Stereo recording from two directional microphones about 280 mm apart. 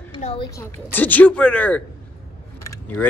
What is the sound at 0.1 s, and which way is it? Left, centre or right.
Speech, centre.